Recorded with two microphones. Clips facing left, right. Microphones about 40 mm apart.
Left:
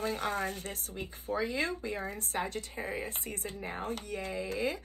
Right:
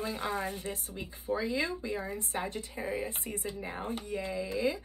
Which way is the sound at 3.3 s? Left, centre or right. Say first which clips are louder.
Right 2 dB; centre.